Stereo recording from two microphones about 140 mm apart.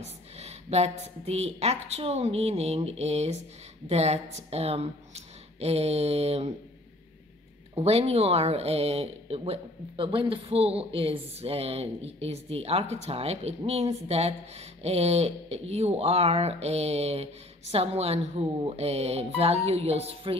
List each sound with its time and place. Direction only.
0.0 s a sound: 50° right (ahead or behind)
1.2 s speech: 50° right (ahead or behind)
7.7 s speech: 45° right (ahead or behind)